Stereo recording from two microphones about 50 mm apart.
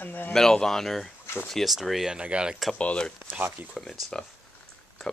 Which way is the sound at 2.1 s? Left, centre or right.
Right.